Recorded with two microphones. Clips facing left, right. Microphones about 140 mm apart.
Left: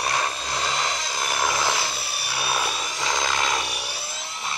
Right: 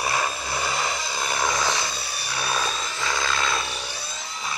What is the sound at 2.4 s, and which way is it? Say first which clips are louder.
Helicopter: even; 10° left (ahead or behind).